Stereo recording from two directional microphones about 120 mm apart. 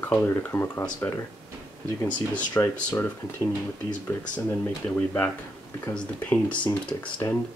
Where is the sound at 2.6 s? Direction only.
20° left (ahead or behind).